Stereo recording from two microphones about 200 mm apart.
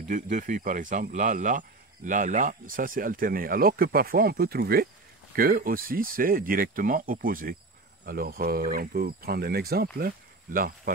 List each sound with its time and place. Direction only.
0.1 s speech: 40° right (ahead or behind)